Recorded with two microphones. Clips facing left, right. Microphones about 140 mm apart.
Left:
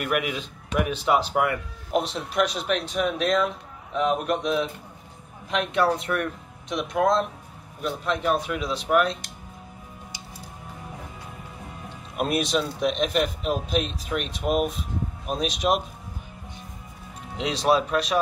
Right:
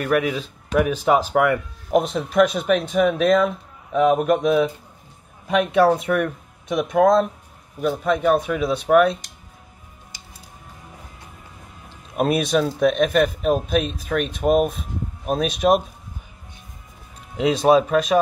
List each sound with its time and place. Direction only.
0.0 s speech: 35° right (ahead or behind)
6.7 s speech: 50° right (ahead or behind)
12.4 s speech: 55° right (ahead or behind)
17.4 s speech: 50° right (ahead or behind)